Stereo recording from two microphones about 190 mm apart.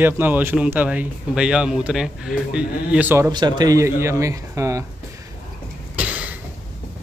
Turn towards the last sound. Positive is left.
turn(degrees=-5)  # may be behind; listen again after turning